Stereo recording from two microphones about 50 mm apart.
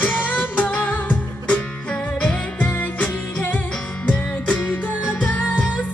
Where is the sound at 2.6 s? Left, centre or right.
Left.